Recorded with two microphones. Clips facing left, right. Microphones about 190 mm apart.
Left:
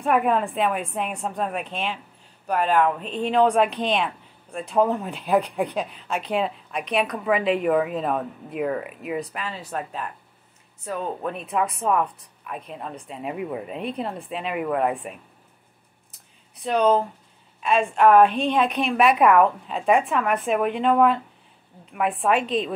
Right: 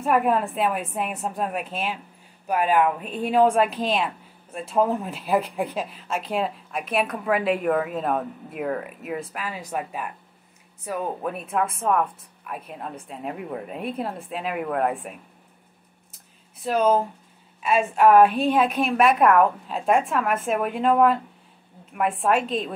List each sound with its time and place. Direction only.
0.0 s speech: centre (ahead or behind)
16.1 s a sound: centre (ahead or behind)
17.6 s speech: 5° right (ahead or behind)